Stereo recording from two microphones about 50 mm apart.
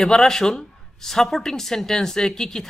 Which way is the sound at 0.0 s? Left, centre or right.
Centre.